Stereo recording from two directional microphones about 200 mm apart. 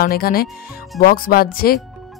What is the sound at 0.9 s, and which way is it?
Music, 45° left (ahead or behind).